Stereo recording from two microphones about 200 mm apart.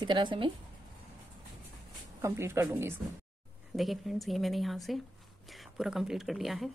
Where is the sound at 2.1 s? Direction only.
15° right (ahead or behind).